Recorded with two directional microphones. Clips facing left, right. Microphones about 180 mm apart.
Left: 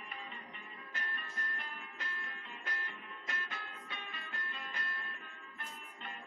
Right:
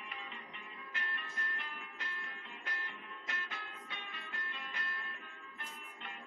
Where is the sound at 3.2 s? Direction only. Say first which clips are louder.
Left 2 dB; 40° left (ahead or behind).